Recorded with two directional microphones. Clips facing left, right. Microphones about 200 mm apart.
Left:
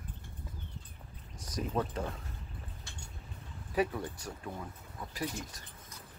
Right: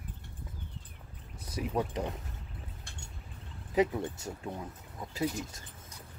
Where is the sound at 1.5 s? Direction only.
15° right (ahead or behind).